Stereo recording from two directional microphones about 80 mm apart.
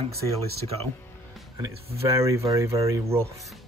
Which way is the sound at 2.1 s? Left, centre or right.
Right.